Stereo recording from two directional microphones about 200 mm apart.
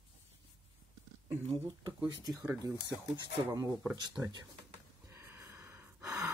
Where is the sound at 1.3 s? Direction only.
15° right (ahead or behind).